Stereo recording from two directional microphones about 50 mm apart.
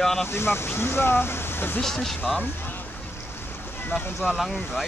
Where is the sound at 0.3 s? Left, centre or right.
Left.